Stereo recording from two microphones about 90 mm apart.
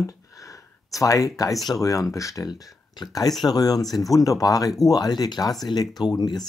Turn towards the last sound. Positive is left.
turn(degrees=50)  # may be behind; listen again after turning